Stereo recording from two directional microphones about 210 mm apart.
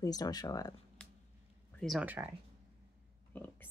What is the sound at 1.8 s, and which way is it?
Speech, centre (ahead or behind).